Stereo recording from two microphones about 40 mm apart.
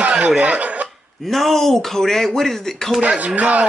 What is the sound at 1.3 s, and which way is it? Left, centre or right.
Speech, centre.